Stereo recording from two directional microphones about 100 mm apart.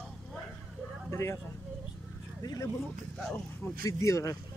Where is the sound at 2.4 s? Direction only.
40° left (ahead or behind).